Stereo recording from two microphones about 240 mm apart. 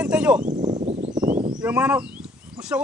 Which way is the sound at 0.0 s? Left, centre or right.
Centre.